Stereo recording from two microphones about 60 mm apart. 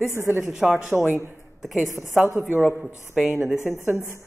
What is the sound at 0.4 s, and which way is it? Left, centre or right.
A woman's voice, centre.